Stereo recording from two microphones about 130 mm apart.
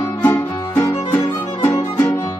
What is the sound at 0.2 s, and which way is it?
Music, 15° left (ahead or behind).